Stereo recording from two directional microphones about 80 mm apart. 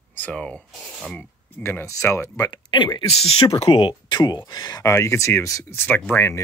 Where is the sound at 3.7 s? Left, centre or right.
Left.